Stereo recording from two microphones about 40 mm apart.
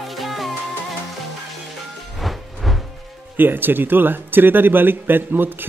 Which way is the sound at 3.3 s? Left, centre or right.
Right.